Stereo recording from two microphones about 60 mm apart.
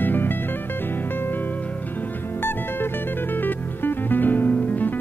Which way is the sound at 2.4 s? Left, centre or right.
Left.